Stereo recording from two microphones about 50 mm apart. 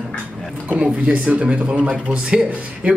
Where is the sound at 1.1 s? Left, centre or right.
Right.